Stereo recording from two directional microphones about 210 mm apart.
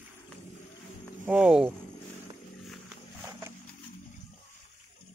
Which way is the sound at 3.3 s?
10° right (ahead or behind).